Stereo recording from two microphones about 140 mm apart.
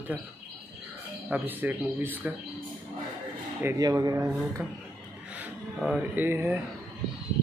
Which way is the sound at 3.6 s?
25° right (ahead or behind).